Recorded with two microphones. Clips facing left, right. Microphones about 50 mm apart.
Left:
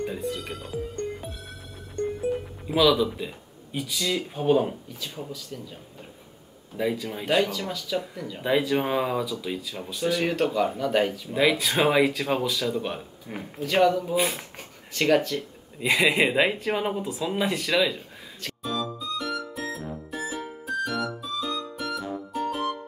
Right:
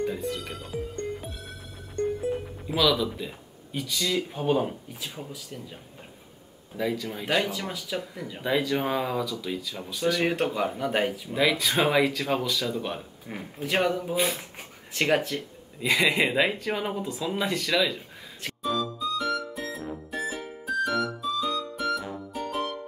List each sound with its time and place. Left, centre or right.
0.0 s speech: centre
2.6 s speech: centre
5.0 s speech: centre
6.8 s speech: centre
7.4 s speech: centre
8.4 s speech: centre
10.2 s speech: centre
11.3 s speech: centre
13.4 s speech: centre
14.1 s speech: centre
15.0 s speech: centre
15.8 s speech: centre
18.6 s music: centre